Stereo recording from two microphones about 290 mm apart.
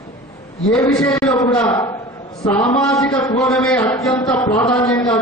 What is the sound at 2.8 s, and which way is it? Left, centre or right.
A man's voice, centre.